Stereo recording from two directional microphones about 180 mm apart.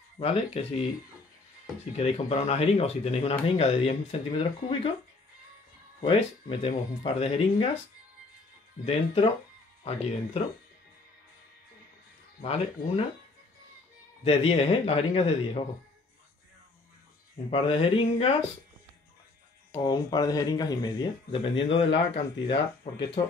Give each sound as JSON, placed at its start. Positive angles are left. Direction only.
{"t": 0.2, "sound": "speech", "side_deg": 35}
{"t": 2.0, "sound": "speech", "side_deg": 35}
{"t": 5.9, "sound": "speech", "side_deg": 30}
{"t": 8.8, "sound": "speech", "side_deg": 35}
{"t": 12.4, "sound": "speech", "side_deg": 35}
{"t": 14.2, "sound": "speech", "side_deg": 35}
{"t": 17.5, "sound": "speech", "side_deg": 30}
{"t": 19.8, "sound": "speech", "side_deg": 20}